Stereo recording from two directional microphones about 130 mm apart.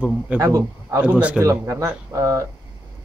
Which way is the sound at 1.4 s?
25° right (ahead or behind).